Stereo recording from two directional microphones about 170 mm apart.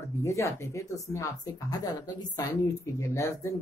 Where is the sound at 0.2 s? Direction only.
15° left (ahead or behind).